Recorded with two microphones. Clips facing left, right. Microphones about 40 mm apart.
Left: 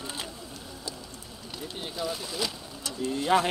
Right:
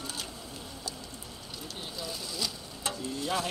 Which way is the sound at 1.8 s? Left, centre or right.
Left.